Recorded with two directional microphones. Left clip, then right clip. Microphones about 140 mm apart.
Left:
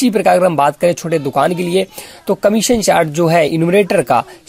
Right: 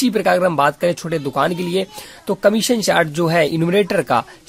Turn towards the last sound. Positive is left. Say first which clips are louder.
# left 4 dB
turn(degrees=20)  # may be behind; listen again after turning